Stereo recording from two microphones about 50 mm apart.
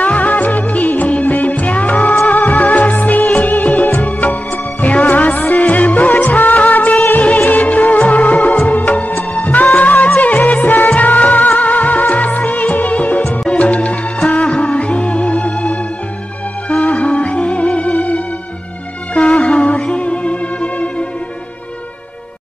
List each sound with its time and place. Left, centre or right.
0.0 s music of bollywood: left
2.2 s music: left